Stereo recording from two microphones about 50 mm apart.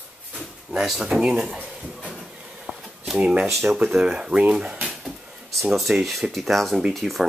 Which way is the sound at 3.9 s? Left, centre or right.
Centre.